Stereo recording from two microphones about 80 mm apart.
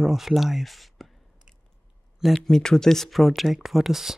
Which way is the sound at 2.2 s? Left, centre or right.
Centre.